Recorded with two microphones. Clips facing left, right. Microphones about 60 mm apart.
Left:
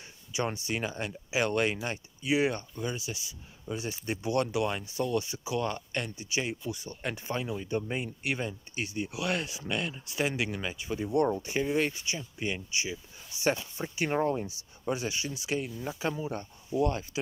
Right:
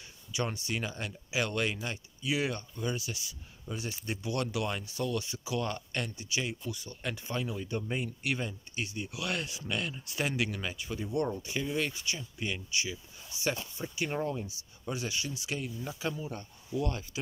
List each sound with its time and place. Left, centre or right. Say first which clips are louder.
0.3 s speech: left 2 dB; left
2.8 s speech: even; centre; by 7.4 s left
7.4 s speech: left 3 dB; centre
11.1 s speech: left 5 dB; left
12.0 s speech: left 2 dB; centre
13.4 s speech: left 4 dB; left
14.9 s speech: left 4 dB; left
16.8 s speech: left 10 dB; left